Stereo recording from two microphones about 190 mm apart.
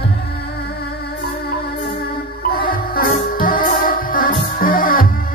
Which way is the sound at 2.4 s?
50° left (ahead or behind).